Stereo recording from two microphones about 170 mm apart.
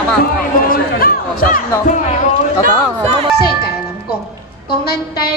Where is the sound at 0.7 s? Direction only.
55° left (ahead or behind).